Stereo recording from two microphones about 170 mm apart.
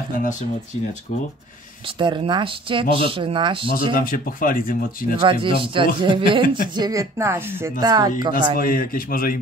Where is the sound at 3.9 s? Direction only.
55° left (ahead or behind).